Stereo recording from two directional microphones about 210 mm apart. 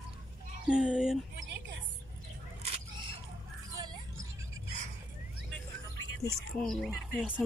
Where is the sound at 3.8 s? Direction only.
20° right (ahead or behind).